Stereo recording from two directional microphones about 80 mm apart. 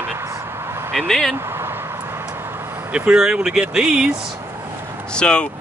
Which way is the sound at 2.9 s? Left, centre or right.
Centre.